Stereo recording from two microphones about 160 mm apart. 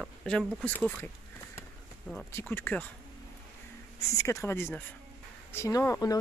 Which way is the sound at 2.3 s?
15° left (ahead or behind).